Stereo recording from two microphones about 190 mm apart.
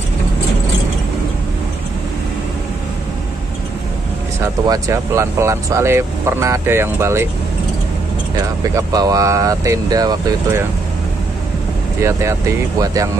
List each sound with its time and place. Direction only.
4.4 s speech: 15° right (ahead or behind)
8.4 s speech: 20° right (ahead or behind)
12.0 s speech: 15° right (ahead or behind)